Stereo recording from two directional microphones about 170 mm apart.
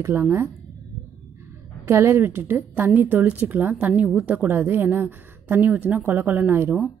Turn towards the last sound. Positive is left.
turn(degrees=-10)  # may be behind; listen again after turning